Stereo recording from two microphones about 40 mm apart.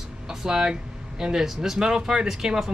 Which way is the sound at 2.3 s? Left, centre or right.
Centre.